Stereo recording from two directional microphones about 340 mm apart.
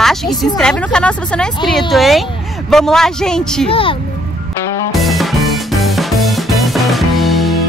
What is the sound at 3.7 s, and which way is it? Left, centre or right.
Speech, centre.